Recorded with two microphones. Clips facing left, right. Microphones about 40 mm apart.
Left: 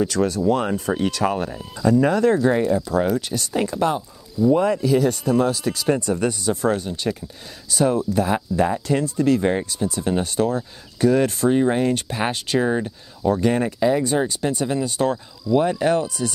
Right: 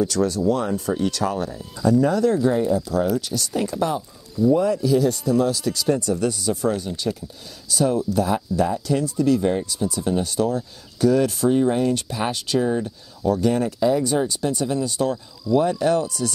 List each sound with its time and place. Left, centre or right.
0.0 s speech: left
9.7 s speech: left